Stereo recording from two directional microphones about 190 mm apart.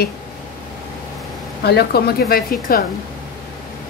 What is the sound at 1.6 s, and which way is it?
Speech, 60° left (ahead or behind).